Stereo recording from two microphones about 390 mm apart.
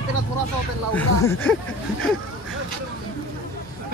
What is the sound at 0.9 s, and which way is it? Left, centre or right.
Speech, centre.